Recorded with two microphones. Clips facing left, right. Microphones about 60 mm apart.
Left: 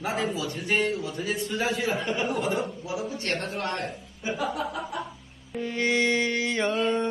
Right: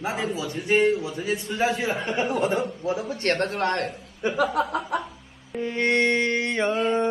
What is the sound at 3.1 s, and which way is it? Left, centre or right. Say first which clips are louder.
A man's voice: right 6 dB; right.